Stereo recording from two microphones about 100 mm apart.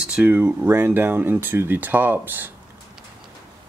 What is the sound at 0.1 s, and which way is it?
Speech, 15° right (ahead or behind).